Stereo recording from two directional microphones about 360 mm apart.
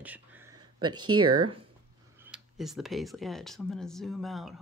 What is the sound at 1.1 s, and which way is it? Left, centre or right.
Speech, right.